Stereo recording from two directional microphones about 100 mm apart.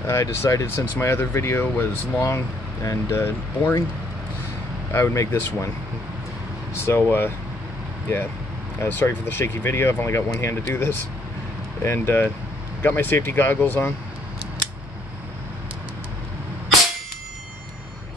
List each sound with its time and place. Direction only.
0.0 s speech: 30° left (ahead or behind)
4.9 s speech: 30° left (ahead or behind)
6.7 s speech: 25° left (ahead or behind)
8.8 s speech: 25° left (ahead or behind)